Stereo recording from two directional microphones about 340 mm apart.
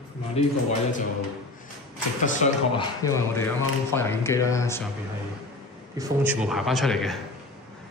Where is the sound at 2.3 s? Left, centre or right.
Left.